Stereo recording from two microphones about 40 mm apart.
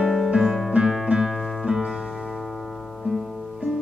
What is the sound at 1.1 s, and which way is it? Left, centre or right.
Music, centre.